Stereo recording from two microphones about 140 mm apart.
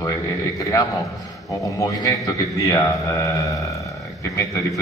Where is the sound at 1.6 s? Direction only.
25° left (ahead or behind).